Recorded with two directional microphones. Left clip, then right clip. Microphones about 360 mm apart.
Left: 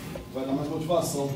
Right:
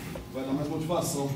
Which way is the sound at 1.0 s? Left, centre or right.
Centre.